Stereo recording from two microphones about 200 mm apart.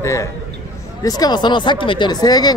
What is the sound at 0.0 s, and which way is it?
A man's voice, 15° left (ahead or behind).